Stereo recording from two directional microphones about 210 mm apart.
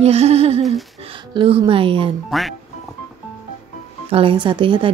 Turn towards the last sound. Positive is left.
turn(degrees=-25)  # may be behind; listen again after turning